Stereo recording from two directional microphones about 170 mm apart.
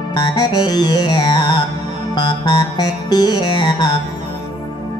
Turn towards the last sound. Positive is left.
turn(degrees=25)  # may be behind; listen again after turning